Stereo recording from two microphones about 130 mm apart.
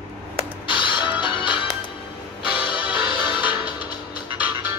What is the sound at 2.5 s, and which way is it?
Music, 10° right (ahead or behind).